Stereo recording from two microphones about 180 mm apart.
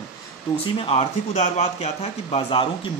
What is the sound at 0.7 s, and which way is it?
Speech, 35° left (ahead or behind).